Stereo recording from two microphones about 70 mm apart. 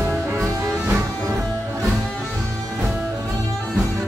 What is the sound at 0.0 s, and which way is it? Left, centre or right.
Music, right.